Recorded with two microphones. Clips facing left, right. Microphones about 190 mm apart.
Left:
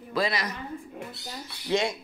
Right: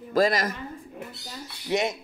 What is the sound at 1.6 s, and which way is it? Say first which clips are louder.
Speech: even; 20° right (ahead or behind).